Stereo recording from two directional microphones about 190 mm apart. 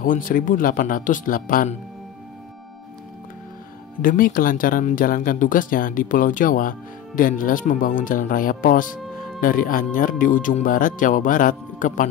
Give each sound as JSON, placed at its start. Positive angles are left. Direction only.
{"t": 0.0, "sound": "speech", "side_deg": 45}
{"t": 4.0, "sound": "speech", "side_deg": 45}